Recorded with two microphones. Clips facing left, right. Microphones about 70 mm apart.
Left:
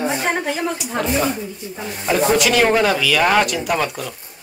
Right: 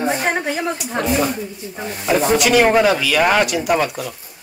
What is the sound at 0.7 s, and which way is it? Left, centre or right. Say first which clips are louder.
Speech: right 1 dB; centre.